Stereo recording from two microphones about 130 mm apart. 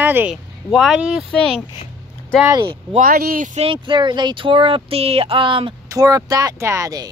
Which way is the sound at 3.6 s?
40° right (ahead or behind).